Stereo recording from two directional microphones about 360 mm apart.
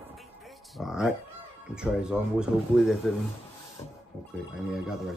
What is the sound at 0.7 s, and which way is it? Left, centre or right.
Speech, centre.